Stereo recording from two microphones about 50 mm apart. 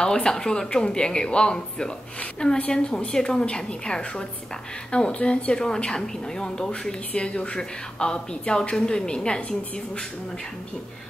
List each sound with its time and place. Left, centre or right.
0.0 s a woman's voice: centre
7.1 s a woman's voice: left